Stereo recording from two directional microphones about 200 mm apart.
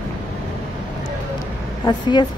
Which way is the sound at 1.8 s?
20° left (ahead or behind).